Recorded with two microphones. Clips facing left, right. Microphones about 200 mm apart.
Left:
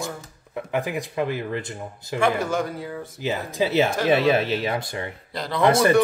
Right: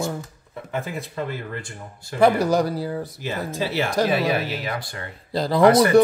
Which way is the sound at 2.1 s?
35° right (ahead or behind).